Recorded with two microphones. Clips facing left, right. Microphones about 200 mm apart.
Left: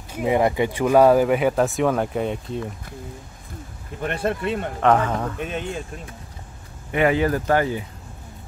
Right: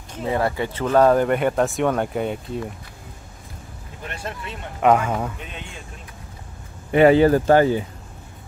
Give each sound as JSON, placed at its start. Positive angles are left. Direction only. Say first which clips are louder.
{"t": 0.1, "sound": "speech", "louder": "left 3 dB", "side_deg": 15}
{"t": 4.0, "sound": "speech", "louder": "left 9 dB", "side_deg": 55}
{"t": 4.8, "sound": "speech", "louder": "right 1 dB", "side_deg": -10}
{"t": 6.9, "sound": "speech", "louder": "right 6 dB", "side_deg": -30}